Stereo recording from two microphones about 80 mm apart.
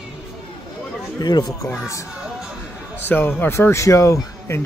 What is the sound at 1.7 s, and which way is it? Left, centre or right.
Speech, left.